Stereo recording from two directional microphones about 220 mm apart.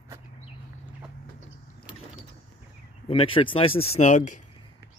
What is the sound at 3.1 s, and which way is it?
Speech, 25° left (ahead or behind).